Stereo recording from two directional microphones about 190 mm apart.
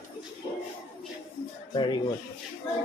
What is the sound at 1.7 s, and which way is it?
Speech, 25° left (ahead or behind).